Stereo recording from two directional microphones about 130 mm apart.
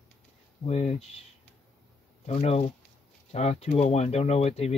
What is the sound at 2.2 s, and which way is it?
Speech, 50° left (ahead or behind).